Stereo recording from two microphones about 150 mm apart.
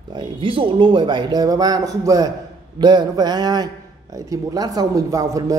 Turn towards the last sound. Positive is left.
turn(degrees=-20)  # may be behind; listen again after turning